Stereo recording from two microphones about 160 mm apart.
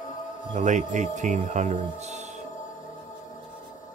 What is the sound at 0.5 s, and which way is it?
Speech, 50° right (ahead or behind).